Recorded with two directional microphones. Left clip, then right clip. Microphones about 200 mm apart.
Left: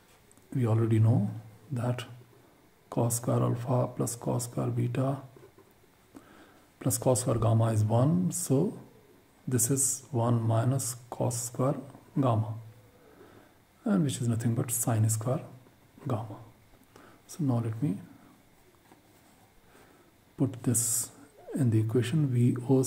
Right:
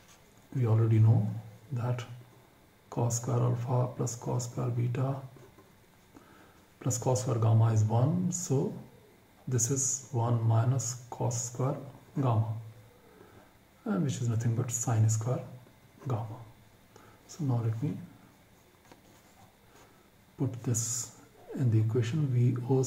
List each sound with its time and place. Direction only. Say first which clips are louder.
0.6 s speech: left 2 dB; 45° left (ahead or behind)
6.8 s speech: left 4 dB; 40° left (ahead or behind)
13.8 s speech: left 4 dB; 45° left (ahead or behind)
16.9 s a sound: left 2 dB; 45° left (ahead or behind)
20.3 s speech: left 4 dB; 40° left (ahead or behind)